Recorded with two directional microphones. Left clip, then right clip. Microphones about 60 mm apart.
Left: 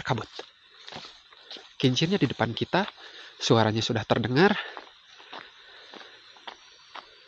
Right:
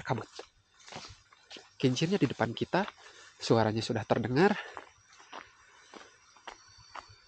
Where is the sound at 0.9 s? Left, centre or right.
Right.